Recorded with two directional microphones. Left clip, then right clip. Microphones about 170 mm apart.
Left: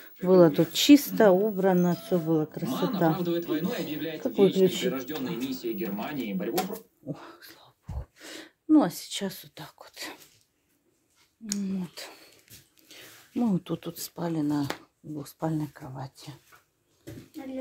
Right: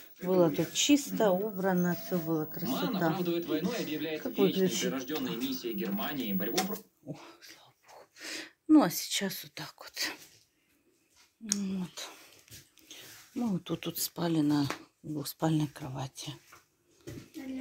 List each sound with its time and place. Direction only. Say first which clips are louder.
0.0 s a woman's voice: left 8 dB; 45° left (ahead or behind)
6.7 s speech: left 4 dB; 45° left (ahead or behind)
7.9 s speech: right 2 dB; 15° left (ahead or behind)
11.4 s speech: left 1 dB; 10° left (ahead or behind)
13.3 s speech: left 6 dB; 30° left (ahead or behind)
13.7 s speech: right 1 dB; 5° left (ahead or behind)